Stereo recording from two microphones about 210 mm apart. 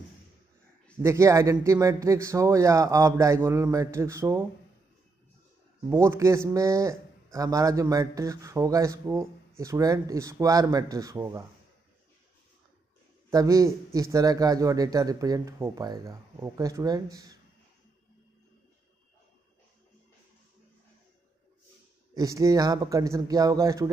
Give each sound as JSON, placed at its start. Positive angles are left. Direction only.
{"t": 1.0, "sound": "a man's voice", "side_deg": -15}
{"t": 5.9, "sound": "a man's voice", "side_deg": -15}
{"t": 13.3, "sound": "a man's voice", "side_deg": -15}
{"t": 22.1, "sound": "a man's voice", "side_deg": -15}